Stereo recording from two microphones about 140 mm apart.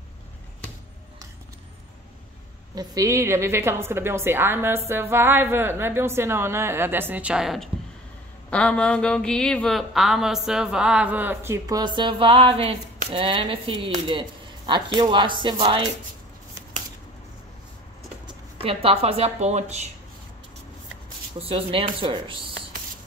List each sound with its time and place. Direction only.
2.7 s a woman's voice: 25° right (ahead or behind)
18.6 s speech: 40° right (ahead or behind)
21.4 s speech: 40° right (ahead or behind)